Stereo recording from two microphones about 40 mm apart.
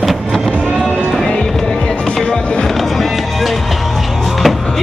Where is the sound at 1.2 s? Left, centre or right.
Left; by 4.7 s centre.